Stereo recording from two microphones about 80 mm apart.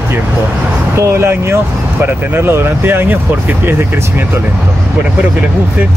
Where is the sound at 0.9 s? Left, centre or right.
Right.